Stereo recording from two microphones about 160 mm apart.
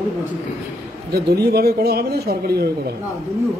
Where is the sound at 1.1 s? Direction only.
80° right.